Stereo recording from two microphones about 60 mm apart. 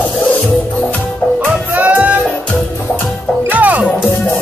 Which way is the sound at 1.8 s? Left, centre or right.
Right.